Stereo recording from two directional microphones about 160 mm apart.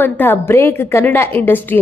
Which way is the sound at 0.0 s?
15° left (ahead or behind).